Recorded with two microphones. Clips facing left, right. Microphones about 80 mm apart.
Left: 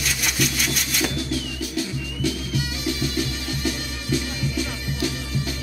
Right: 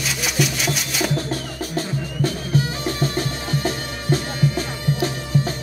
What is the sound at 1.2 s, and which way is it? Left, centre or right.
Music, right.